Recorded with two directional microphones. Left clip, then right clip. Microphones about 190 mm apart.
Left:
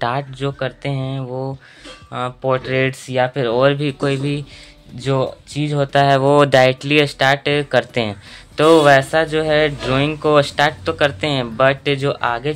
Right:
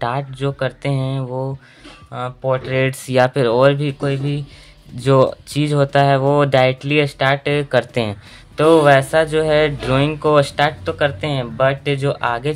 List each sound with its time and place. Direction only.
0.0 s speech: centre (ahead or behind)
2.1 s speech: 10° left (ahead or behind)
2.9 s speech: 15° right (ahead or behind)
3.6 s speech: centre (ahead or behind)
4.0 s speech: 15° left (ahead or behind)
4.9 s speech: 25° right (ahead or behind)
5.8 s speech: 5° right (ahead or behind)